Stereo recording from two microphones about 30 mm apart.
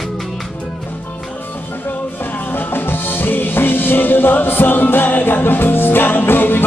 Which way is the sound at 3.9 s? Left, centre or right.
Left.